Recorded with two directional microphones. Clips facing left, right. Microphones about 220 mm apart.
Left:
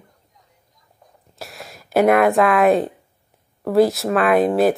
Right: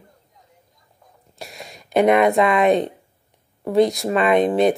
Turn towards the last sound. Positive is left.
turn(degrees=5)  # may be behind; listen again after turning